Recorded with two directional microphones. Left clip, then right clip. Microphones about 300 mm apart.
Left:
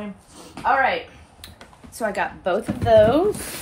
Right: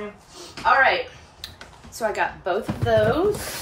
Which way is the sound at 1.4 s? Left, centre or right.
Left.